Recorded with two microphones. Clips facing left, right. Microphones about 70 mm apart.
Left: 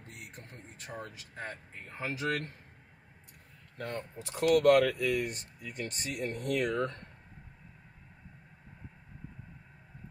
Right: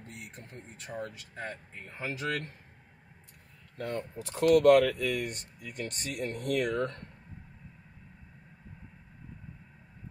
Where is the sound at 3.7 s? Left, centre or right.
Left.